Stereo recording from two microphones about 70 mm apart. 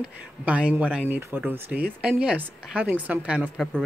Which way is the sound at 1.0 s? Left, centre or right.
Right.